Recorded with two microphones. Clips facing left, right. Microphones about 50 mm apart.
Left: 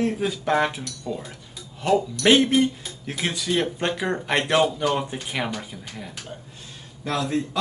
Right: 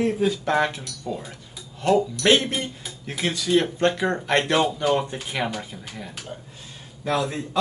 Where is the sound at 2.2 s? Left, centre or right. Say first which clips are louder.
Left 3 dB; centre.